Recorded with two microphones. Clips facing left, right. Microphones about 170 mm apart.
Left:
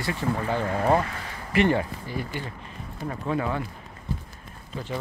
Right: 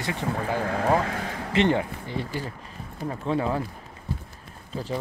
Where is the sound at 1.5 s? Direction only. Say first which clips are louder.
Even; 20° right (ahead or behind).